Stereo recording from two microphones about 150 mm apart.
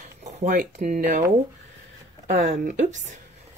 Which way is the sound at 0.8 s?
60° right (ahead or behind).